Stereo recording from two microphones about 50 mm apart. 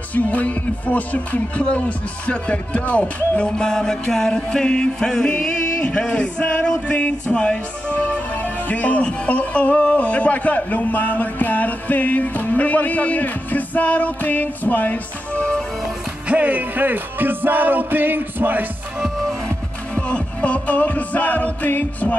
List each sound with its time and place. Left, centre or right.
0.1 s music: left
3.5 s music: centre; by 15.4 s left
16.3 s music: right
20.0 s music: left